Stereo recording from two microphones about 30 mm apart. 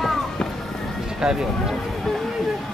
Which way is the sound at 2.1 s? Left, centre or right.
Centre.